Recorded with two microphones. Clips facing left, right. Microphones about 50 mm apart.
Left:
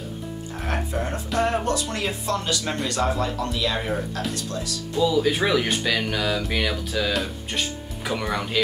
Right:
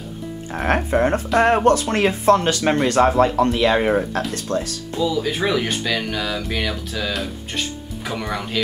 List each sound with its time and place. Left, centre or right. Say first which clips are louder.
0.6 s speech: right 10 dB; right
5.0 s speech: even; centre